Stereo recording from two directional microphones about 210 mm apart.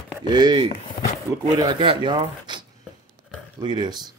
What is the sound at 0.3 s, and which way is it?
Speech, 20° right (ahead or behind).